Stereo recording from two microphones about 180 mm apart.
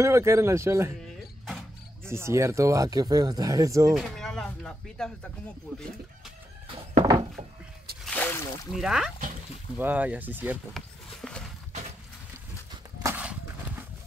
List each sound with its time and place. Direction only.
0.0 s speech: 15° right (ahead or behind)
1.0 s guitar: centre (ahead or behind)
2.0 s speech: 15° right (ahead or behind)
3.9 s speech: centre (ahead or behind)
6.7 s thunk: 40° right (ahead or behind)
8.0 s a sound: 5° left (ahead or behind)
8.8 s speech: centre (ahead or behind)
11.1 s a sound: 5° left (ahead or behind)
13.0 s horse: 10° right (ahead or behind)